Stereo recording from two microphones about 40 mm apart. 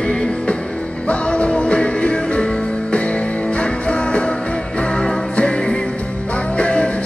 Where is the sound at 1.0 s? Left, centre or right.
Left.